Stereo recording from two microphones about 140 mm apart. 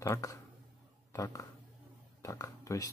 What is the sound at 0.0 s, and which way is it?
Speech, 20° left (ahead or behind).